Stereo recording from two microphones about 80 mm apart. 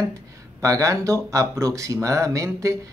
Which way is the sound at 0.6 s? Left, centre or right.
Right.